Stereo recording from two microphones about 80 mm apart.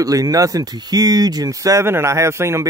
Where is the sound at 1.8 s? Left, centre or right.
Right.